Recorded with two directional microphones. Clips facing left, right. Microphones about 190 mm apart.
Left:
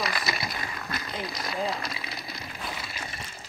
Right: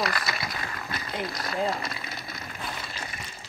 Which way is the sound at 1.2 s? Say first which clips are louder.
Right 3 dB; centre (ahead or behind).